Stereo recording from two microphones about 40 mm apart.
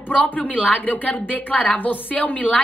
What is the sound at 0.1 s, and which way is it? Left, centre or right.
A woman's voice, left.